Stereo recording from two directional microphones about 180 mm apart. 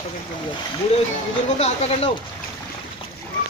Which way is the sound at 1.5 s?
35° left (ahead or behind).